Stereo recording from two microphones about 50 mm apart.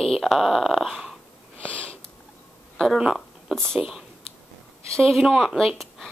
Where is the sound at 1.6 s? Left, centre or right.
Left.